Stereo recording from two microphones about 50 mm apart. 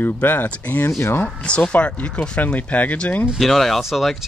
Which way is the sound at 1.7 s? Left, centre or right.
Left.